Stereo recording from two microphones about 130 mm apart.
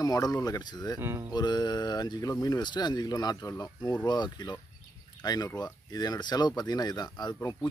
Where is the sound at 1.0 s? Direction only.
20° right (ahead or behind).